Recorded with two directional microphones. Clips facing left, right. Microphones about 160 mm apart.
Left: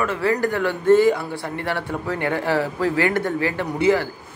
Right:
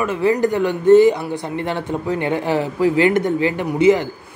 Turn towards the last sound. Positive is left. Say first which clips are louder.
# right 4 dB
turn(degrees=-20)  # may be behind; listen again after turning